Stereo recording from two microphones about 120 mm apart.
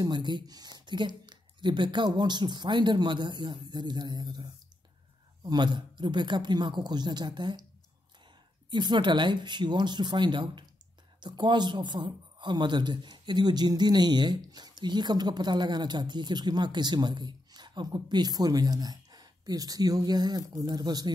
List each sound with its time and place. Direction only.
0.0 s speech: 40° right (ahead or behind)
8.6 s speech: 40° right (ahead or behind)